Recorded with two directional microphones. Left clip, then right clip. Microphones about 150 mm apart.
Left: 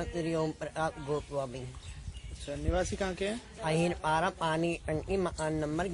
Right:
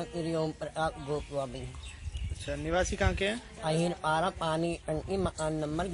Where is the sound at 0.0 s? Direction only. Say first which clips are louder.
Even; 10° left (ahead or behind).